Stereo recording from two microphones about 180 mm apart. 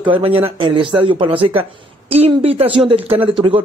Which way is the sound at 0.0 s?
30° right (ahead or behind).